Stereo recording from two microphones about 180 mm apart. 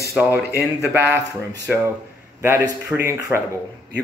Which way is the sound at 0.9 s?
10° right (ahead or behind).